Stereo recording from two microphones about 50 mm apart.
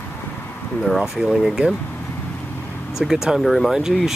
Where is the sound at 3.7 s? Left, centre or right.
Centre.